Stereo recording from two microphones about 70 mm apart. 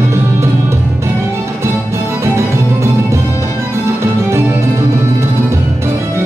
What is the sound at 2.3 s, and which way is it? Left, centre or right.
Music, right.